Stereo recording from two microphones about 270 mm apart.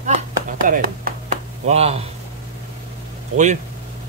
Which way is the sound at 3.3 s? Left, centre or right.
Right.